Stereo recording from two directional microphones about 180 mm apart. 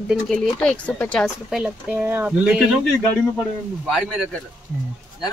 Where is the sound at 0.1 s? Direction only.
5° left (ahead or behind).